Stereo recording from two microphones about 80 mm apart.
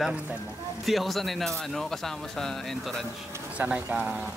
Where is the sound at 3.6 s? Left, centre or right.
Right.